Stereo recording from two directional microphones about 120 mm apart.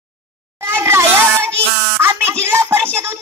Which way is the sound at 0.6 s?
20° right (ahead or behind).